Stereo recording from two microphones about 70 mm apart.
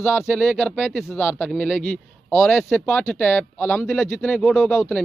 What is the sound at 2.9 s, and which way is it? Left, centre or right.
Speech, left.